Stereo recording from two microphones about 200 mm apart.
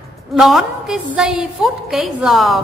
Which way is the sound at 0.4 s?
Centre (ahead or behind).